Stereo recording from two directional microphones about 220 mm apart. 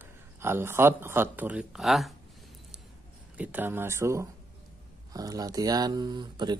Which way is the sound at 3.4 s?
10° right (ahead or behind).